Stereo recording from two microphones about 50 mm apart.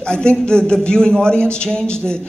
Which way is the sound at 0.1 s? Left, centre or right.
Centre.